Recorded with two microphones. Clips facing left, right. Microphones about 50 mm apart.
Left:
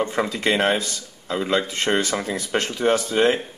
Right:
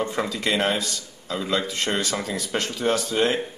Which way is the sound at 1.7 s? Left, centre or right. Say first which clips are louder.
Left 4 dB; left.